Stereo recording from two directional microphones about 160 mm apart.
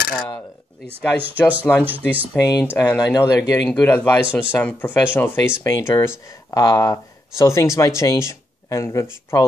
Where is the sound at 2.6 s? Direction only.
15° left (ahead or behind).